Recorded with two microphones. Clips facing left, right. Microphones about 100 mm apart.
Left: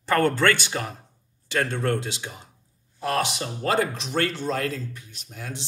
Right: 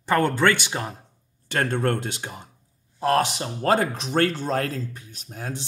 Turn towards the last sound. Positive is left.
turn(degrees=-40)  # may be behind; listen again after turning